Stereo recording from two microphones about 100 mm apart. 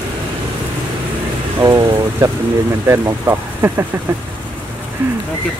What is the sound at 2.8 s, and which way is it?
Speech, 30° right (ahead or behind).